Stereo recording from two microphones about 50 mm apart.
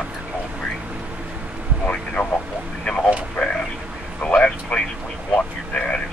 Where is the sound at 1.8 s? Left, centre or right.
Left.